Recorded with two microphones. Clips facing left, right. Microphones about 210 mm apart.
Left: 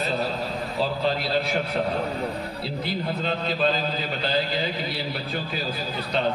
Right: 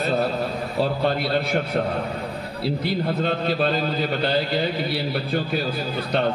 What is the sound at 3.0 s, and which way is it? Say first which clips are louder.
A man's voice: right 4 dB; 65° right (ahead or behind).